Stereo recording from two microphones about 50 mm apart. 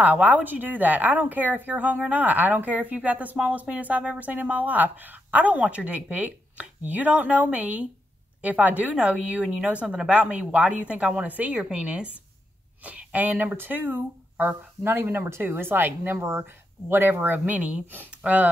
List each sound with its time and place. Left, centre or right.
0.0 s a woman's voice: right
11.2 s a woman's voice: right
11.7 s speech: right
16.3 s speech: right
16.9 s speech: right
17.6 s speech: right